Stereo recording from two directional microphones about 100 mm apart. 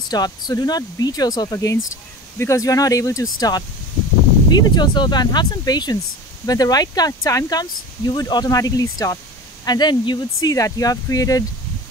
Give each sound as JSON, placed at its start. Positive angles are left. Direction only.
{"t": 0.1, "sound": "speech", "side_deg": 40}
{"t": 9.7, "sound": "speech", "side_deg": 45}